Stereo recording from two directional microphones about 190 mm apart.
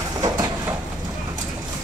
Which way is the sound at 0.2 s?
20° right (ahead or behind).